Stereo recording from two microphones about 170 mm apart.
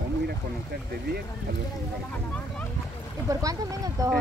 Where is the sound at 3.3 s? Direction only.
20° right (ahead or behind).